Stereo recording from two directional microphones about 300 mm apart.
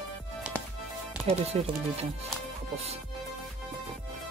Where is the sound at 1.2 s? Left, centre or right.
Centre.